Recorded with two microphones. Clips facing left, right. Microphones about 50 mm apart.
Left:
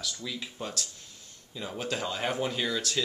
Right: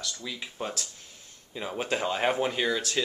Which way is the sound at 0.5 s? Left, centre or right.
Right.